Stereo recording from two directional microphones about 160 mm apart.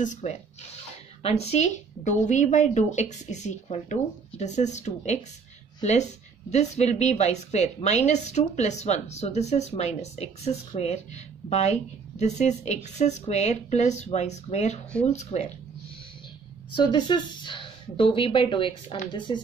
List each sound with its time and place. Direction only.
0.0 s a woman's voice: 45° left (ahead or behind)
16.7 s speech: 30° left (ahead or behind)